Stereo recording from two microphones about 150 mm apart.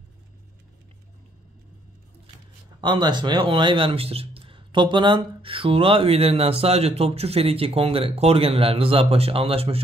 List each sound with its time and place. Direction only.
2.8 s speech: 30° right (ahead or behind)